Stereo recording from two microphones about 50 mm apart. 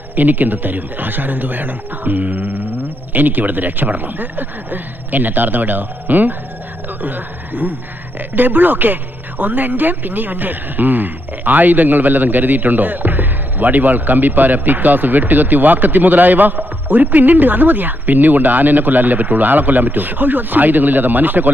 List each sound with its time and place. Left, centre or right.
0.1 s speech: right